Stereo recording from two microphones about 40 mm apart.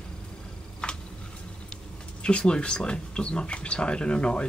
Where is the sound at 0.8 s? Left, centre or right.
Centre.